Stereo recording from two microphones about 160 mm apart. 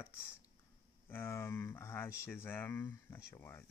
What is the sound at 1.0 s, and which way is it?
Speech, 15° left (ahead or behind).